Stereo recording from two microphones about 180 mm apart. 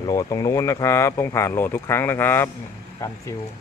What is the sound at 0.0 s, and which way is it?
Speech, 20° left (ahead or behind).